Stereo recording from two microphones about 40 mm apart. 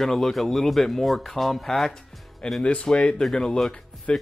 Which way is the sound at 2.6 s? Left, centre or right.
Left.